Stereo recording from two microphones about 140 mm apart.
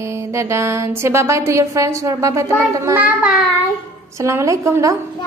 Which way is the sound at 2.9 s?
10° right (ahead or behind).